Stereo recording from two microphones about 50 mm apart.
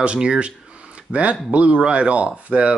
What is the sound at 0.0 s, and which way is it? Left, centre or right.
Speech, right.